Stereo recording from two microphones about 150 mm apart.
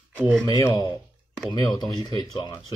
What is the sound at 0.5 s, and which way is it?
Speech, 20° left (ahead or behind).